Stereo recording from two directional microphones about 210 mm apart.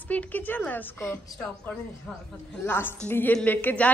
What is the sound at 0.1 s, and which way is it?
A woman's voice, 5° left (ahead or behind).